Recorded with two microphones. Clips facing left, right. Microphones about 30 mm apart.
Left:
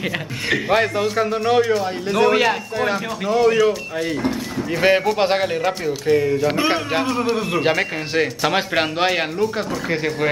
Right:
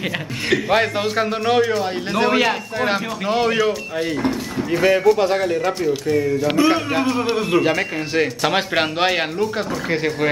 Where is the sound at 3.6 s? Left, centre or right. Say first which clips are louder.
Left 1 dB; centre.